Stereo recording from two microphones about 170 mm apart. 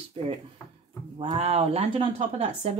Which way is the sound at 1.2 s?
35° right (ahead or behind).